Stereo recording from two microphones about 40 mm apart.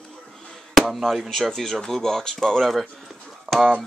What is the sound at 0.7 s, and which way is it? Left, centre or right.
Chop, centre.